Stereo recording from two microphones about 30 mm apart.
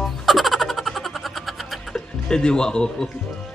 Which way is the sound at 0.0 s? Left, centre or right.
Centre.